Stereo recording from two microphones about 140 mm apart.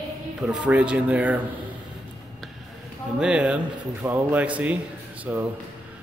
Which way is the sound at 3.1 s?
5° right (ahead or behind).